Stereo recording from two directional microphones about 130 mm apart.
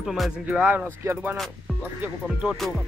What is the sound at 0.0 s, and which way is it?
Speech, 5° right (ahead or behind).